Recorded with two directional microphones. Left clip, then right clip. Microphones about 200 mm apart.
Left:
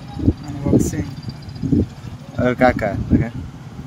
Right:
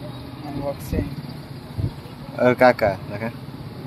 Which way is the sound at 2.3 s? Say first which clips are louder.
Right 1 dB; 15° left (ahead or behind).